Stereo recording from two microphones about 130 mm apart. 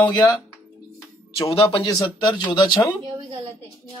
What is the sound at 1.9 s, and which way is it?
Speech, 35° left (ahead or behind).